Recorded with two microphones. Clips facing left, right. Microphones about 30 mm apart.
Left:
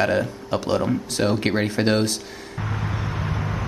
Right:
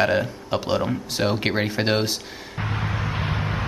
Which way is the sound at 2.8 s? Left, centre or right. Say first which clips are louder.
Right 2 dB; right.